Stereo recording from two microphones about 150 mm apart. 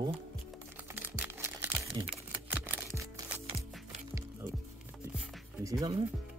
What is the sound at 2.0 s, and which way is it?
Speech, 30° right (ahead or behind).